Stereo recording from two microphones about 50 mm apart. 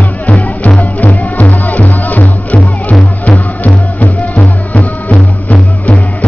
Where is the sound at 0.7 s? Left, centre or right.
Left.